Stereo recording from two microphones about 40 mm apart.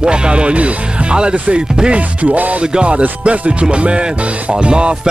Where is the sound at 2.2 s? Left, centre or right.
Right.